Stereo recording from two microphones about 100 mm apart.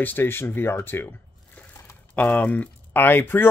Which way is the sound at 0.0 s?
20° left (ahead or behind).